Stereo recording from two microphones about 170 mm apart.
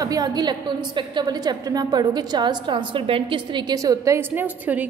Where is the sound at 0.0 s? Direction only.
20° right (ahead or behind).